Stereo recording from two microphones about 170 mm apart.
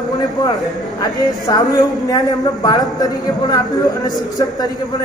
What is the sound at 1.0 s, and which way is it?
A man's voice, 20° left (ahead or behind).